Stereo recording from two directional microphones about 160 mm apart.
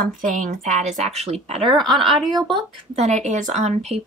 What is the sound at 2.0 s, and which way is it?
Speech, centre (ahead or behind).